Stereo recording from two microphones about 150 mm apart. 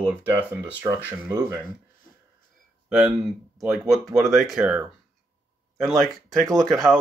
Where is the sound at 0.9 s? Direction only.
20° right (ahead or behind).